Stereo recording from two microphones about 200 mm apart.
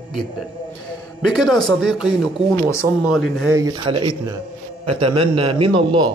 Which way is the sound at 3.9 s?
25° right (ahead or behind).